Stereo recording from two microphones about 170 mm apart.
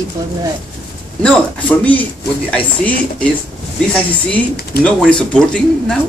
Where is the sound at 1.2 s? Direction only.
5° left (ahead or behind).